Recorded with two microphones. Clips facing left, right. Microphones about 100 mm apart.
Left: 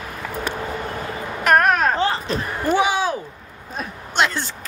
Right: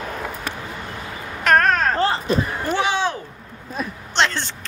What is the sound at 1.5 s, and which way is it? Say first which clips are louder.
Baby cry: left 1 dB; 15° left (ahead or behind).